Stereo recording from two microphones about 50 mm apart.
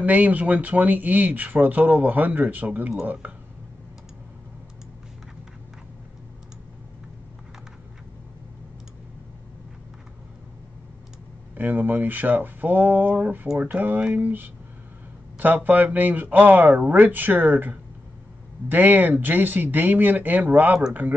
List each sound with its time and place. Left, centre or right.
0.0 s speech: right
3.2 s a sound: right
11.5 s speech: right